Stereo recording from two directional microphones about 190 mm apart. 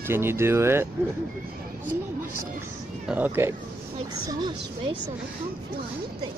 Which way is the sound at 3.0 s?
10° right (ahead or behind).